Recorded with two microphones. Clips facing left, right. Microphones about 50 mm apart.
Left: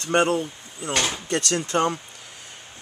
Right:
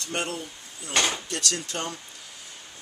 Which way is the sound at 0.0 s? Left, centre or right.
Left.